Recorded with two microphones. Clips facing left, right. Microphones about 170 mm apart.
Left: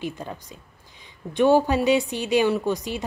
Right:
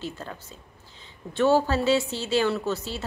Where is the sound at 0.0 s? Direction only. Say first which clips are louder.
Left 4 dB; 15° left (ahead or behind).